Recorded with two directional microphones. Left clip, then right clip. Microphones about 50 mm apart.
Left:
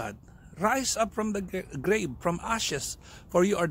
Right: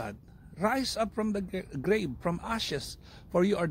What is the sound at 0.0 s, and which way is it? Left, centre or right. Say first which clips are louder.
A man's voice: left 2 dB; left.